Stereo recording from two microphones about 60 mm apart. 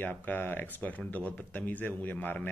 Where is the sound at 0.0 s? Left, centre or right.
Left.